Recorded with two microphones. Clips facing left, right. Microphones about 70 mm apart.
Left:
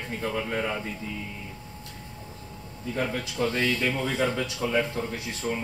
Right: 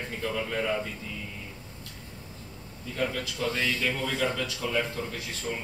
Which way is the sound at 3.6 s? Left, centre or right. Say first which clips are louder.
Left 3 dB; left.